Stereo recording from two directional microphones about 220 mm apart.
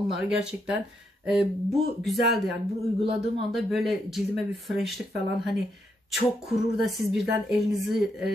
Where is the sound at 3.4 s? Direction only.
Centre (ahead or behind).